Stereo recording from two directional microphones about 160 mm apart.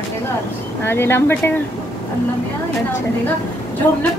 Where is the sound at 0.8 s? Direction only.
15° left (ahead or behind).